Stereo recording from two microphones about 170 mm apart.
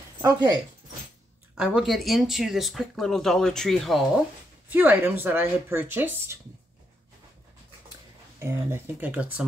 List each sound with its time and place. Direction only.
0.2 s speech: 20° right (ahead or behind)
1.8 s speech: centre (ahead or behind)
4.6 s speech: 10° right (ahead or behind)
8.4 s speech: 15° right (ahead or behind)